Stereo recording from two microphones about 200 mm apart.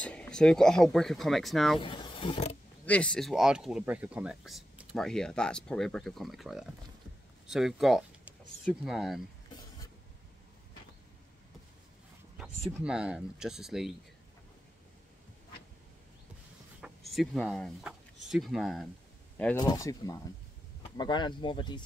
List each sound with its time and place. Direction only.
0.0 s speech: 5° left (ahead or behind)
1.8 s speech: 25° left (ahead or behind)
2.8 s speech: 5° left (ahead or behind)
12.4 s speech: 5° right (ahead or behind)
16.8 s speech: centre (ahead or behind)
19.5 s speech: 20° left (ahead or behind)